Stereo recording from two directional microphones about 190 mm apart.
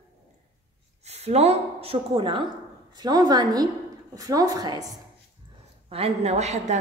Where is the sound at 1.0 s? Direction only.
35° right (ahead or behind).